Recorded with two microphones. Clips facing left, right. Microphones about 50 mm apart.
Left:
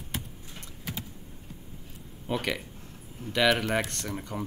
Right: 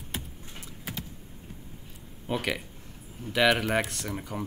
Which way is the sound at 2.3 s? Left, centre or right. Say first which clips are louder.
Even; centre.